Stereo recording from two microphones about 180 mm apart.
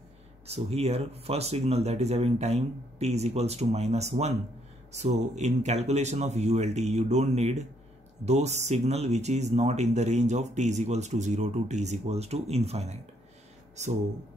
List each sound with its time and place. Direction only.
0.5 s speech: 35° right (ahead or behind)